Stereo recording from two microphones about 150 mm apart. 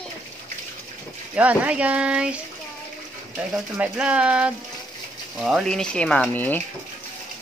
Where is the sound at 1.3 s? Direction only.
10° right (ahead or behind).